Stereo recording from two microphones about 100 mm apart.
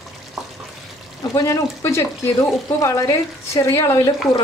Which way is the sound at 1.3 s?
30° left (ahead or behind).